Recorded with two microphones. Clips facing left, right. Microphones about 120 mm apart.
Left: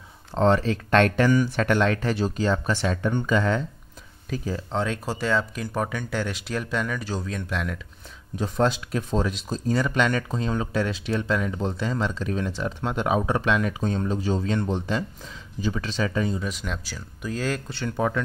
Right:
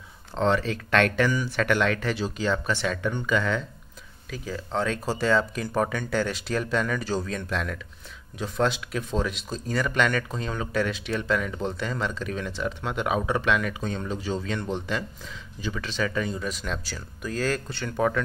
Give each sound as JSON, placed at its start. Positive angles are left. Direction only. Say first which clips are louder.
{"t": 0.3, "sound": "speech", "louder": "left 3 dB", "side_deg": 40}
{"t": 2.1, "sound": "speech", "louder": "left 3 dB", "side_deg": 45}
{"t": 4.7, "sound": "speech", "louder": "right 2 dB", "side_deg": 15}
{"t": 8.4, "sound": "speech", "louder": "left 2 dB", "side_deg": 40}
{"t": 16.3, "sound": "speech", "louder": "even", "side_deg": 20}
{"t": 17.2, "sound": "speech", "louder": "right 1 dB", "side_deg": 20}